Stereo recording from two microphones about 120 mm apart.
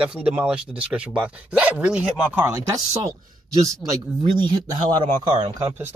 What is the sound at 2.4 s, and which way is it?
Speech, 25° right (ahead or behind).